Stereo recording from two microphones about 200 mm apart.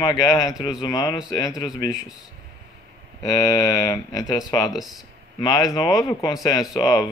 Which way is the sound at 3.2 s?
20° left (ahead or behind).